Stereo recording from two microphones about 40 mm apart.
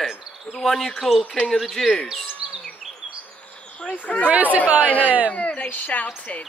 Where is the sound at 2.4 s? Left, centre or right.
Centre.